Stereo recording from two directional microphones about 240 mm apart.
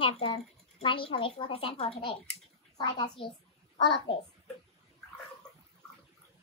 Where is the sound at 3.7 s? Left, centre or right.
Centre.